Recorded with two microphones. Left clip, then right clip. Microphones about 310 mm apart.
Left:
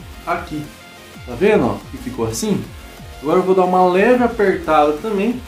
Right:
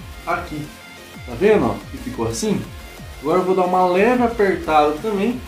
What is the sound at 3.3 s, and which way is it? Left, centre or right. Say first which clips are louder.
Speech: left 3 dB; centre.